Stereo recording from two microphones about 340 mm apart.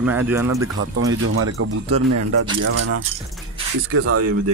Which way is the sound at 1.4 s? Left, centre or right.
Right.